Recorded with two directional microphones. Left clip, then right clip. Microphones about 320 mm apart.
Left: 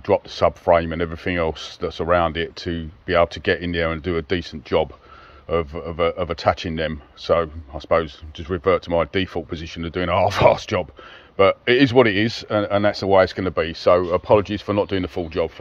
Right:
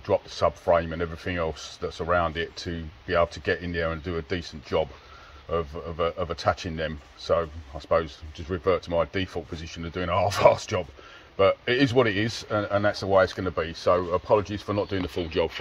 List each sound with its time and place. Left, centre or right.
0.1 s speech: centre
15.0 s speech: centre